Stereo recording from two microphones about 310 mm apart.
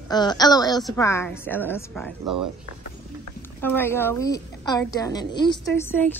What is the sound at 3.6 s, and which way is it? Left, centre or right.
Speech, centre.